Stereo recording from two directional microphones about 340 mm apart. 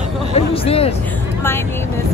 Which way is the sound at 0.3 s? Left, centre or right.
Centre.